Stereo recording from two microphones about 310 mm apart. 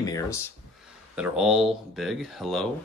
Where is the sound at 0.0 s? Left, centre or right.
Centre.